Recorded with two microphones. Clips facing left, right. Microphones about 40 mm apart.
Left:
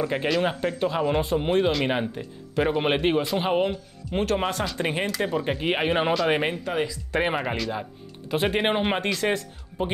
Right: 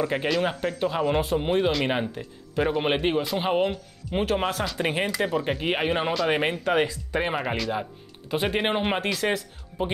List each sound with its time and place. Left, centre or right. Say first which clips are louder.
0.0 s speech: left 1 dB; centre
6.6 s speech: right 4 dB; right
7.2 s speech: left 1 dB; centre